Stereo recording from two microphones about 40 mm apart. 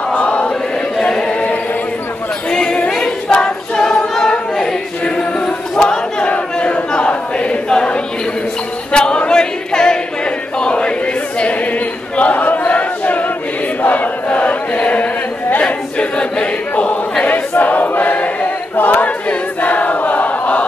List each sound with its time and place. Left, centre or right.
0.1 s chant: left
1.0 s choir: left
2.5 s a capella: left
4.6 s choir: centre
5.8 s battle cry: left
6.3 s a sound: left
8.9 s a capella: left
9.3 s choir: centre
12.2 s a sound: left
13.8 s chant: left
15.6 s choir: left
17.2 s choir: left